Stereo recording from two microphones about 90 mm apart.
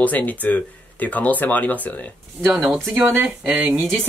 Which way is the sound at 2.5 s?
5° right (ahead or behind).